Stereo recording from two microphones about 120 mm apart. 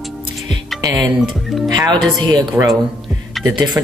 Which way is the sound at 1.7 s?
35° right (ahead or behind).